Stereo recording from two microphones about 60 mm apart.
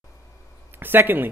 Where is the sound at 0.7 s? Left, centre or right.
Right.